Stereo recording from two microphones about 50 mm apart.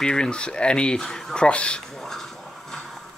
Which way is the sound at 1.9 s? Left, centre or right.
Centre.